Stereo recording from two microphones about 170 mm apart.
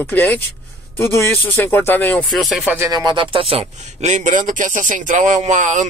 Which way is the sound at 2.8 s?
20° right (ahead or behind).